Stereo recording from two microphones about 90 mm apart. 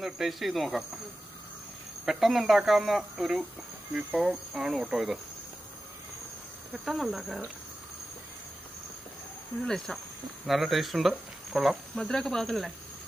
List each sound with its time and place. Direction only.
0.0 s speech: centre (ahead or behind)
2.0 s speech: centre (ahead or behind)
6.8 s speech: centre (ahead or behind)
9.7 s speech: 5° left (ahead or behind)